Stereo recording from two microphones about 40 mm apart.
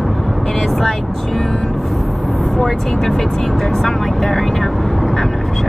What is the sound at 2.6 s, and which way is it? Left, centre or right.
Speech, centre.